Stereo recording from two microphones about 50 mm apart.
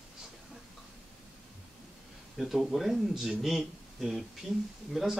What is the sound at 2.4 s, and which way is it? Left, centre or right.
A woman's voice, centre.